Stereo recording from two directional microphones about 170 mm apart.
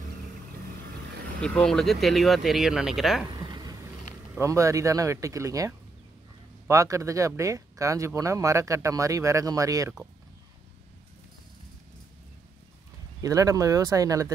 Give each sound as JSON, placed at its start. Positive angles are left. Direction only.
{"t": 1.4, "sound": "speech", "side_deg": 5}
{"t": 3.3, "sound": "a sound", "side_deg": -25}
{"t": 4.4, "sound": "speech", "side_deg": -20}
{"t": 13.2, "sound": "speech", "side_deg": -20}